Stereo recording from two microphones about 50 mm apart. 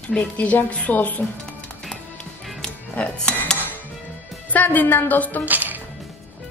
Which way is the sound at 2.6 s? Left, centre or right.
Centre.